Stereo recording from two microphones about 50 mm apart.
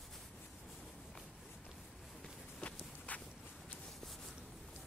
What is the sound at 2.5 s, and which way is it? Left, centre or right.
Walk, left.